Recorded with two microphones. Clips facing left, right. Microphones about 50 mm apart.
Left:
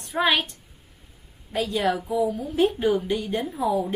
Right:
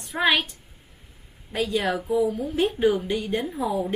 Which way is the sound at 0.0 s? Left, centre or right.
Centre.